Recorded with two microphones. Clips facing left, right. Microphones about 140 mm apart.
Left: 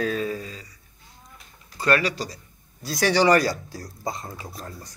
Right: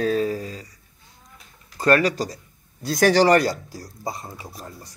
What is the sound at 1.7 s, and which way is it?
Speech, 40° right (ahead or behind).